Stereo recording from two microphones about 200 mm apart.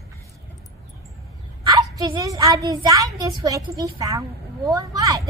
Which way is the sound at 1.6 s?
20° right (ahead or behind).